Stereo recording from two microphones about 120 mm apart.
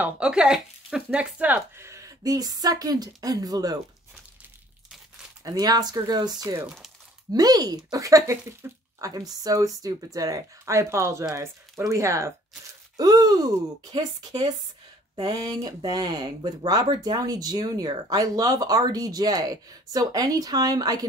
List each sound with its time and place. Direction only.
0.0 s speech: 10° right (ahead or behind); by 3.7 s 30° right (ahead or behind)
5.4 s speech: 30° right (ahead or behind)
9.0 s speech: 30° right (ahead or behind)